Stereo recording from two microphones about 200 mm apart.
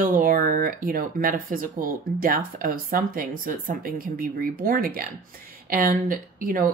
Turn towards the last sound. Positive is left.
turn(degrees=-45)  # may be behind; listen again after turning